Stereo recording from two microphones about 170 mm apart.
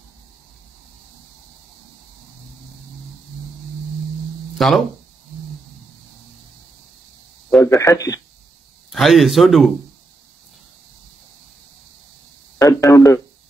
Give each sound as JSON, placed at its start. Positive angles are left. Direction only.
{"t": 4.6, "sound": "speech", "side_deg": 0}
{"t": 7.6, "sound": "a man's voice", "side_deg": 20}
{"t": 8.9, "sound": "speech", "side_deg": 0}
{"t": 12.5, "sound": "speech", "side_deg": 20}